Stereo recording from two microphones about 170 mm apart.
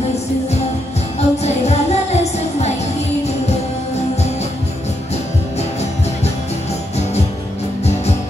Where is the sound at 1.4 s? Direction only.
40° left (ahead or behind).